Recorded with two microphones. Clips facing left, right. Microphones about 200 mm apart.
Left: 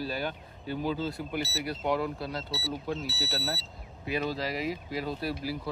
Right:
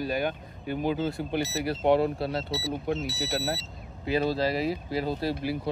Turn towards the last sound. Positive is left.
turn(degrees=-25)  # may be behind; listen again after turning